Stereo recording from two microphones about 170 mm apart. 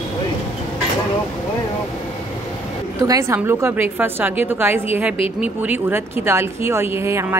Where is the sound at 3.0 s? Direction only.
20° right (ahead or behind).